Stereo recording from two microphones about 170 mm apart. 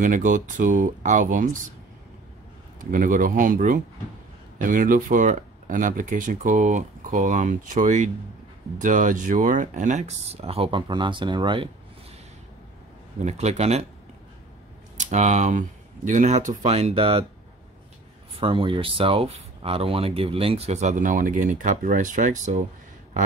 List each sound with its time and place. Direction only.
0.0 s speech: 50° right (ahead or behind)
2.8 s speech: 50° right (ahead or behind); by 11.7 s 30° right (ahead or behind)
13.2 s speech: 40° right (ahead or behind)
15.0 s speech: 45° right (ahead or behind)
18.4 s speech: 30° right (ahead or behind)